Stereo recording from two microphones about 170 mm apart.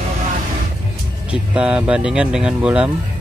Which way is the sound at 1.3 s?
5° right (ahead or behind).